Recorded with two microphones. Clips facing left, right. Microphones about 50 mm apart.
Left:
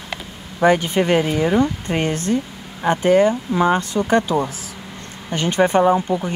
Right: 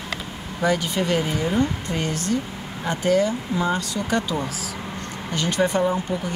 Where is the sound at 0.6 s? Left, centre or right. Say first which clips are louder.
Left 6 dB; left.